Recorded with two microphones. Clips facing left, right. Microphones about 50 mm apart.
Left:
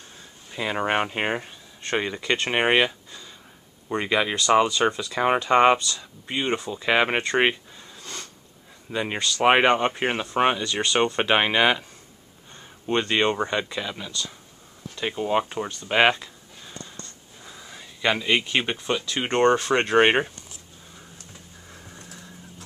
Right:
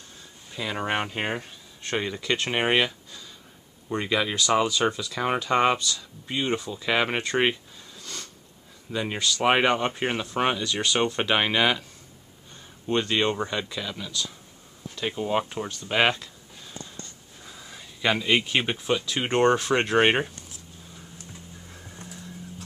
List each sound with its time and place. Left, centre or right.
0.5 s speech: centre
7.3 s sniff: centre
8.9 s speech: centre
12.8 s speech: centre
15.9 s a sound: centre
17.4 s speech: centre
21.6 s music: centre